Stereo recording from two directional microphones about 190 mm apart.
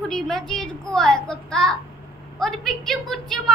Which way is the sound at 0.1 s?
Centre (ahead or behind).